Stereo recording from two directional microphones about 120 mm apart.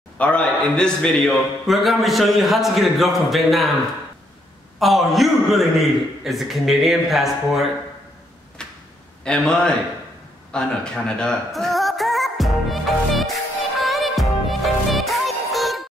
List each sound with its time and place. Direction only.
0.2 s a man's voice: 10° left (ahead or behind)
4.7 s a man's voice: centre (ahead or behind)
8.6 s arrow: 5° left (ahead or behind)
9.2 s a man's voice: 5° left (ahead or behind)
10.5 s a sound: 5° left (ahead or behind)